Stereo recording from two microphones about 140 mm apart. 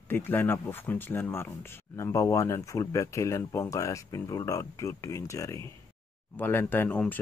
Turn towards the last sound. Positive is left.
turn(degrees=10)  # may be behind; listen again after turning